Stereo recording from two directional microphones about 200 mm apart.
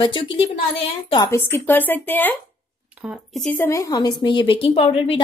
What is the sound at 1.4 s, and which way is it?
Speech, 10° left (ahead or behind).